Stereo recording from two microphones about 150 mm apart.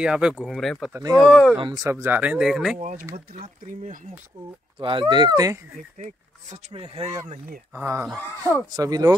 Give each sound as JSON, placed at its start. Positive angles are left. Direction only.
{"t": 0.0, "sound": "speech", "side_deg": -5}
{"t": 0.9, "sound": "speech", "side_deg": -25}
{"t": 1.2, "sound": "speech", "side_deg": 0}
{"t": 1.6, "sound": "speech", "side_deg": -25}
{"t": 2.8, "sound": "speech", "side_deg": -60}
{"t": 4.7, "sound": "speech", "side_deg": -30}
{"t": 5.9, "sound": "speech", "side_deg": -50}
{"t": 6.7, "sound": "speech", "side_deg": -40}
{"t": 7.7, "sound": "speech", "side_deg": -15}
{"t": 8.2, "sound": "speech", "side_deg": 15}
{"t": 8.7, "sound": "speech", "side_deg": -25}